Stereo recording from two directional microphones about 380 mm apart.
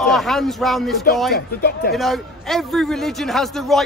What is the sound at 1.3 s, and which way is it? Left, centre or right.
Speech, left.